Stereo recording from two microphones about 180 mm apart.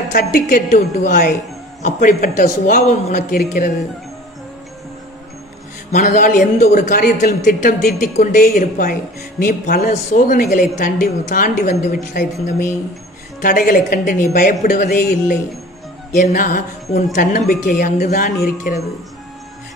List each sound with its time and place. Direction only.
0.1 s a woman's voice: 55° left (ahead or behind)
0.7 s a man's voice: 45° left (ahead or behind)
5.9 s a man's voice: 45° left (ahead or behind)